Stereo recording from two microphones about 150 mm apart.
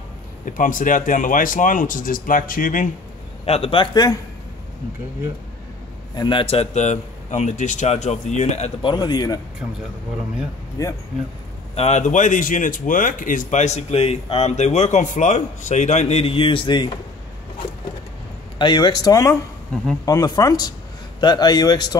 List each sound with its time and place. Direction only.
0.5 s speech: 60° left (ahead or behind)
3.4 s a man's voice: 40° left (ahead or behind)
6.1 s speech: 30° left (ahead or behind); by 8.7 s 50° left (ahead or behind)
8.8 s speech: 30° left (ahead or behind)
10.8 s speech: 20° left (ahead or behind)
11.7 s speech: 45° left (ahead or behind)
18.6 s speech: 30° left (ahead or behind)